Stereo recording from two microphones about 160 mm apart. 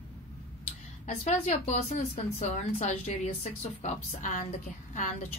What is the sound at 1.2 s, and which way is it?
Speech, 45° left (ahead or behind).